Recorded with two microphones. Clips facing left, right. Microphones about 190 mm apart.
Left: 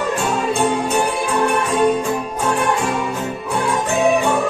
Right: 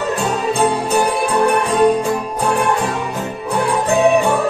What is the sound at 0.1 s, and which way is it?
Music, 35° right (ahead or behind).